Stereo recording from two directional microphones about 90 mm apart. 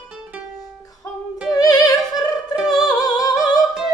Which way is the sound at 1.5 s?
45° left (ahead or behind).